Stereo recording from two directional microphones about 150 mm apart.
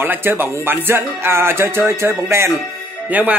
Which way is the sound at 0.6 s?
15° right (ahead or behind).